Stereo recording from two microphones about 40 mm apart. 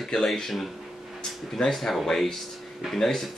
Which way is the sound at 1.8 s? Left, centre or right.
Centre.